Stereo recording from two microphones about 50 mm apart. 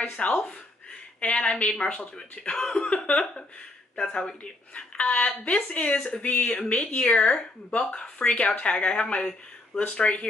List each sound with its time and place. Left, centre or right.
0.0 s a woman's voice: left
5.9 s speech: centre
6.2 s a woman's voice: left
7.2 s a woman's voice: centre